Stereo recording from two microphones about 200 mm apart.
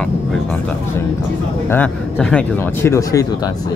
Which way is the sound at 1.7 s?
5° left (ahead or behind).